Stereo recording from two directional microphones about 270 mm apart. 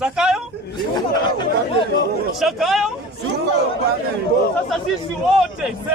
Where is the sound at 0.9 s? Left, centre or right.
Centre.